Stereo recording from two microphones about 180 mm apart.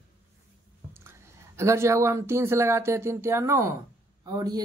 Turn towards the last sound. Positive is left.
turn(degrees=-20)  # may be behind; listen again after turning